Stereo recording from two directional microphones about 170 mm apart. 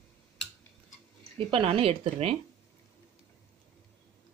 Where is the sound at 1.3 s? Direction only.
35° right (ahead or behind).